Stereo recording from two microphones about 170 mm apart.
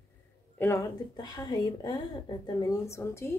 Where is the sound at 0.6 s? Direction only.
15° left (ahead or behind).